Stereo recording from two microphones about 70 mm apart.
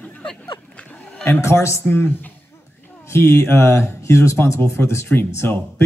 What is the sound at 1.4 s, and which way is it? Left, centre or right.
Speech, left.